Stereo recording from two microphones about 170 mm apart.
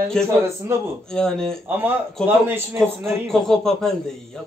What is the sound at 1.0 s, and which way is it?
Speech, 5° left (ahead or behind).